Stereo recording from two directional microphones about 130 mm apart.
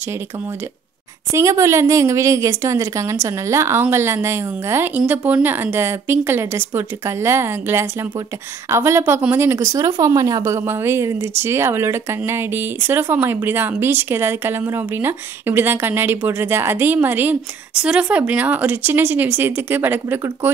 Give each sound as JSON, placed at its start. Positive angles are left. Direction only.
{"t": 1.3, "sound": "a woman's voice", "side_deg": -25}